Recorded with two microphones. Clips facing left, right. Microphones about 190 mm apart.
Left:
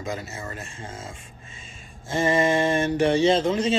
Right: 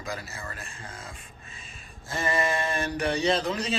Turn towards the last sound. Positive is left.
turn(degrees=25)  # may be behind; listen again after turning